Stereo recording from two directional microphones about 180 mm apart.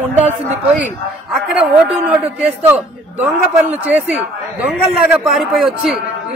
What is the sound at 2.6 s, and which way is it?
A man's voice, 10° right (ahead or behind).